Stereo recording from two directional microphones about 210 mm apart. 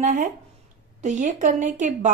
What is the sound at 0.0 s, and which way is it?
Speech, 40° right (ahead or behind).